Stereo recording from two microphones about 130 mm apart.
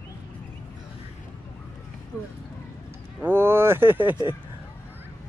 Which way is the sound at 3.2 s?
15° right (ahead or behind).